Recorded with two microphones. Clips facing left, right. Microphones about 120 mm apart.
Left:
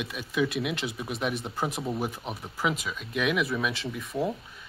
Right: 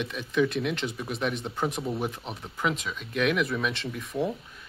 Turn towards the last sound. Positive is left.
turn(degrees=0)  # may be behind; listen again after turning